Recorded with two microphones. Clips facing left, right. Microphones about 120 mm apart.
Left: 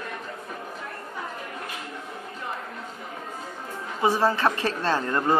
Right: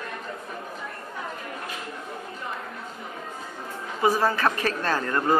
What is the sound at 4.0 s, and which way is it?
A woman's voice, 25° left (ahead or behind).